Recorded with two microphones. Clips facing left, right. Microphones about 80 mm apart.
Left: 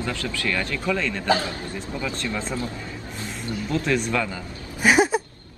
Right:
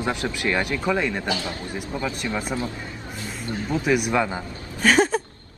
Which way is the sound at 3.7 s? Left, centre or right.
Centre.